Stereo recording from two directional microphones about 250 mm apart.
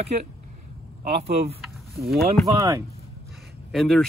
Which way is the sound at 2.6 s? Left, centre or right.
Centre.